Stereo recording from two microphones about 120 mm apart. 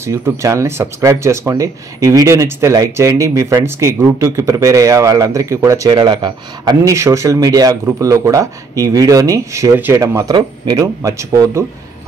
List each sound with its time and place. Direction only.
0.0 s speech: 25° right (ahead or behind)
5.9 s speech: 40° right (ahead or behind)
6.9 s speech: 25° right (ahead or behind)